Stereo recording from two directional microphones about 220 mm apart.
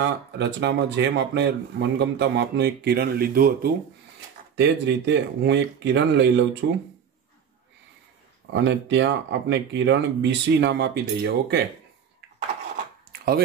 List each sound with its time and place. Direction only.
0.0 s speech: 50° right (ahead or behind)
4.6 s speech: 55° right (ahead or behind)
8.5 s speech: 55° right (ahead or behind)